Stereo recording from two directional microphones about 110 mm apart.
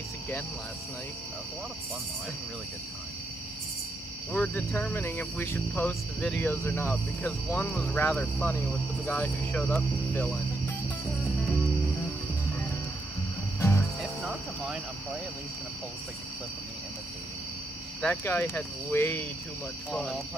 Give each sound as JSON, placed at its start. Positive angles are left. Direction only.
{"t": 4.3, "sound": "speech", "side_deg": 10}
{"t": 13.6, "sound": "music", "side_deg": 25}
{"t": 18.0, "sound": "speech", "side_deg": 20}
{"t": 19.9, "sound": "speech", "side_deg": 0}